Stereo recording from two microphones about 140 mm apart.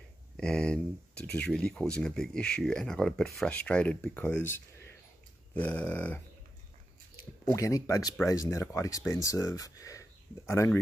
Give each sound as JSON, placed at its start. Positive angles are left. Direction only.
{"t": 0.4, "sound": "speech", "side_deg": 5}
{"t": 7.4, "sound": "speech", "side_deg": 25}